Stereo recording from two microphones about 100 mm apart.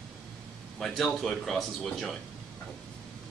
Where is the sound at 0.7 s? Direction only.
5° left (ahead or behind).